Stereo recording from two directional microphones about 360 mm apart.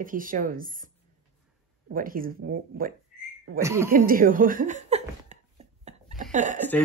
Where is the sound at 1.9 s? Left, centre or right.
Right.